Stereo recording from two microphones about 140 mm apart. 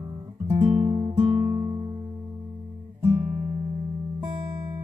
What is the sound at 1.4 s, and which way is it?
Music, 25° right (ahead or behind).